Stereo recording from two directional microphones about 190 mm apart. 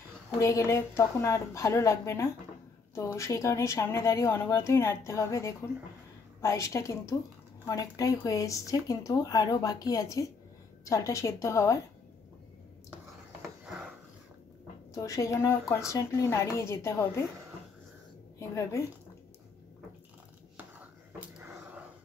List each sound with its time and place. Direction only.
0.4 s speech: 15° left (ahead or behind)
13.7 s a sound: 5° right (ahead or behind)
15.0 s speech: 15° left (ahead or behind)
18.4 s speech: 15° left (ahead or behind)
21.2 s dog: 5° right (ahead or behind)